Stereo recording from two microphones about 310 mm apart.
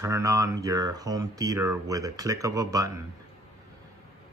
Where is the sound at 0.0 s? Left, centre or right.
Centre.